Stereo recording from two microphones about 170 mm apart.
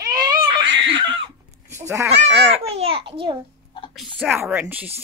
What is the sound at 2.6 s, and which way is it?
Speech, 35° right (ahead or behind).